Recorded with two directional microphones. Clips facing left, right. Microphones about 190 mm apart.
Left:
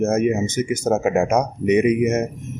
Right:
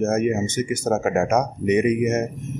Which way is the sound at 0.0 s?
10° left (ahead or behind).